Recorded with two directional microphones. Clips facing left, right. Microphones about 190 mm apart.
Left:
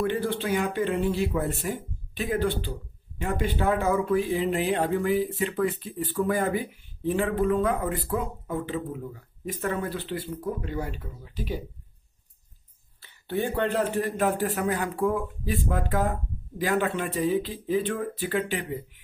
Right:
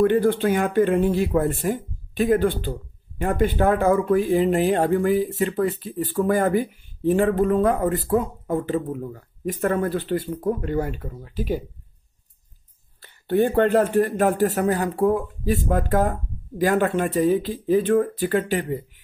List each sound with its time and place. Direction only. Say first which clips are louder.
0.0 s speech: right 9 dB; 50° right (ahead or behind)
13.0 s speech: right 8 dB; 50° right (ahead or behind)